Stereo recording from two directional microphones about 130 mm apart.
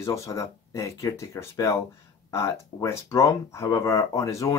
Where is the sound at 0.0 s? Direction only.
25° left (ahead or behind).